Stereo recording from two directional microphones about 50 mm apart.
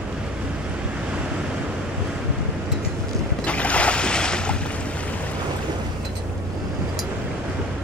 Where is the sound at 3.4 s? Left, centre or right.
Left.